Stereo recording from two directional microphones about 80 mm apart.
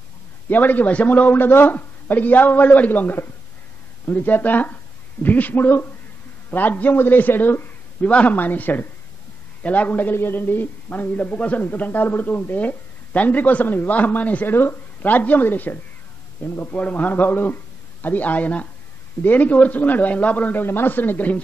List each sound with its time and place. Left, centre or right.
0.5 s a man's voice: left